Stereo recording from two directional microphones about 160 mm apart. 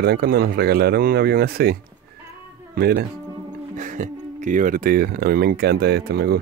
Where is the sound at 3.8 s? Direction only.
50° right (ahead or behind).